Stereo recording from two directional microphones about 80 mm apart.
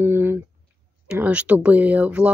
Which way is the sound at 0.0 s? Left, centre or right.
Right.